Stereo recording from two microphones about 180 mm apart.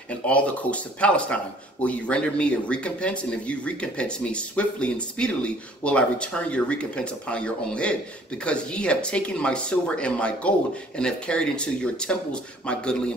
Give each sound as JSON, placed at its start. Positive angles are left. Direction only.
{"t": 0.1, "sound": "speech", "side_deg": 5}